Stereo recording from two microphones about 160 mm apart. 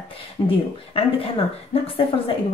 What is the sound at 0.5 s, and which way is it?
Speech, 35° left (ahead or behind).